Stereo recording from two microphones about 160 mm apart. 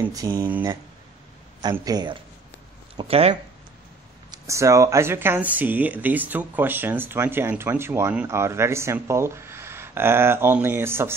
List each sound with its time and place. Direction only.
0.0 s speech: 20° right (ahead or behind)
1.6 s speech: 25° right (ahead or behind)
3.0 s speech: 40° right (ahead or behind)
4.3 s speech: 20° right (ahead or behind)